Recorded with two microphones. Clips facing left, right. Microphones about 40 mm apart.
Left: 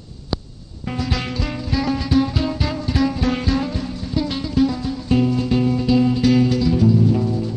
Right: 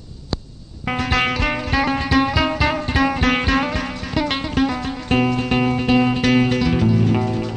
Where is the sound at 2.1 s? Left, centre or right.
Right.